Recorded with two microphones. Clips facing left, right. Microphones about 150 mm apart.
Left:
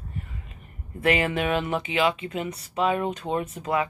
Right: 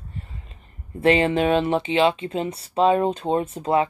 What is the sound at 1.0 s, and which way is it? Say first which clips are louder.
Speech: right 5 dB; 30° right (ahead or behind).